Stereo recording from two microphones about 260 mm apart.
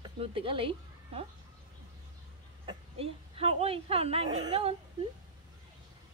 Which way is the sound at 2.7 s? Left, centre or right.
Right.